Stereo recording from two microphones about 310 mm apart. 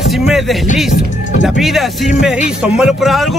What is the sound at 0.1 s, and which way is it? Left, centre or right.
Speech, centre.